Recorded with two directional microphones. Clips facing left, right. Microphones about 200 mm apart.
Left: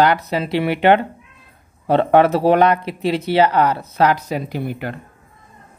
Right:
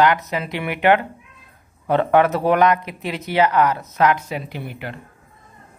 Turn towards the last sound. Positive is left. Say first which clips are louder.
# left 6 dB
turn(degrees=45)  # may be behind; listen again after turning